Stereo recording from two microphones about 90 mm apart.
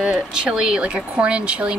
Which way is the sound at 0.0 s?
10° right (ahead or behind).